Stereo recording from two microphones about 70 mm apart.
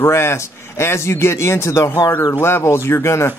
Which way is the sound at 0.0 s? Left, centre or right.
Left.